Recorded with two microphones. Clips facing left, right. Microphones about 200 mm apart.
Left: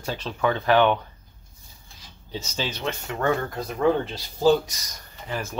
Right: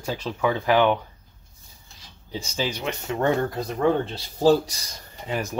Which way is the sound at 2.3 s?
10° right (ahead or behind).